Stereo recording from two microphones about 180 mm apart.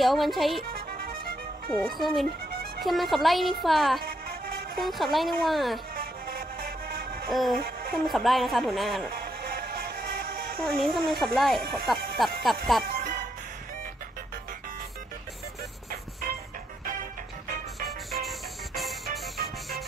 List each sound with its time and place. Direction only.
0.0 s speech: centre (ahead or behind)
2.0 s speech: centre (ahead or behind)
7.2 s speech: centre (ahead or behind)
10.3 s music: 60° right (ahead or behind)
10.6 s speech: centre (ahead or behind)
15.9 s music: 55° right (ahead or behind)
17.8 s music: centre (ahead or behind)